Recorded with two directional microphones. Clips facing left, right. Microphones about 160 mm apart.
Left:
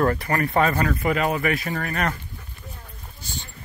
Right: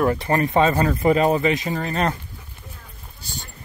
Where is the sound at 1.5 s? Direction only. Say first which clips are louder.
Right 3 dB; 20° right (ahead or behind).